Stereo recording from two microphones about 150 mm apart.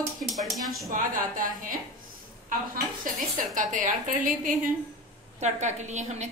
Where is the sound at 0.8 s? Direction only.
65° right (ahead or behind).